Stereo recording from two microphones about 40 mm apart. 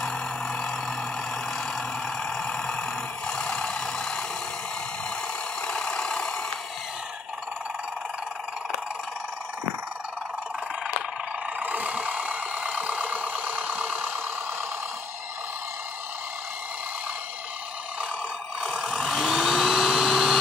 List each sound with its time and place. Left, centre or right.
0.0 s vehicle: centre
1.8 s vehicle: centre
5.7 s vehicle: left
11.6 s vehicle: right
18.6 s vehicle: centre
18.9 s a sound: centre
19.2 s a sound: centre